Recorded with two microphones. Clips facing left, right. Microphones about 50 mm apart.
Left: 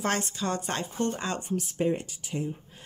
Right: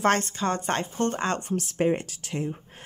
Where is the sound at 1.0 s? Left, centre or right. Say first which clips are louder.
Right 4 dB; right.